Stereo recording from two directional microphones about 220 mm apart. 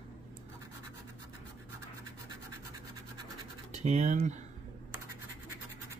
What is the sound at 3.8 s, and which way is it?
Speech, 30° right (ahead or behind).